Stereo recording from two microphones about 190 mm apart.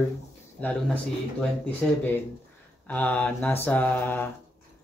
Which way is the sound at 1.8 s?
5° left (ahead or behind).